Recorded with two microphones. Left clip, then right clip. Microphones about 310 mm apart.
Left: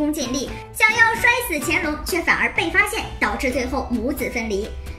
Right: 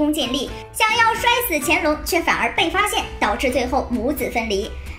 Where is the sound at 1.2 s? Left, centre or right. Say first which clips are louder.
Even; right.